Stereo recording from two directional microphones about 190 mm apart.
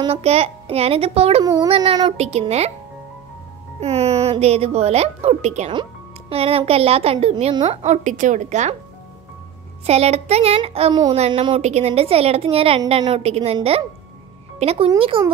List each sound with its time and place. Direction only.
0.0 s speech: 30° right (ahead or behind)
1.4 s a child's voice: 20° right (ahead or behind)
2.1 s speech: 35° right (ahead or behind)
3.8 s speech: 35° right (ahead or behind)
9.8 s speech: 35° right (ahead or behind)
11.1 s a child's voice: 35° right (ahead or behind)